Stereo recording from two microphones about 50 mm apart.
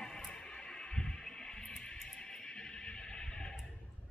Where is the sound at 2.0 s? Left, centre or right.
Centre.